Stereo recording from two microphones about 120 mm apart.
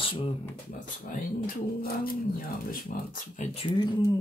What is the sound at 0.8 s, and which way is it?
Speech, 90° left.